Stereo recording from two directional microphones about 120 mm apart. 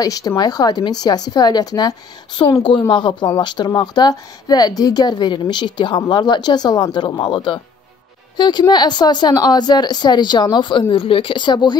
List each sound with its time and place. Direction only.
0.0 s speech: 30° left (ahead or behind)